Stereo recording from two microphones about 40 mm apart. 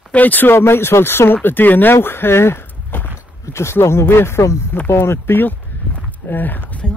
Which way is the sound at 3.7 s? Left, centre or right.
Left.